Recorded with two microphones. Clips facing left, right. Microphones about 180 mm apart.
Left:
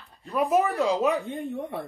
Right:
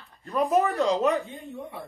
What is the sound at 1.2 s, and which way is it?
Speech, 60° left (ahead or behind).